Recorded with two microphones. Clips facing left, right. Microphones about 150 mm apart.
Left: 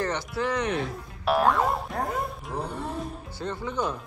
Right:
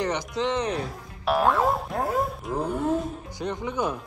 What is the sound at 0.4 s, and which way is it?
Speech, 25° right (ahead or behind).